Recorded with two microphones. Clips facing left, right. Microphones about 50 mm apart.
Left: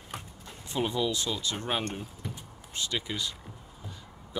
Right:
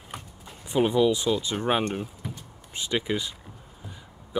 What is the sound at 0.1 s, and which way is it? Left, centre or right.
Speech, centre.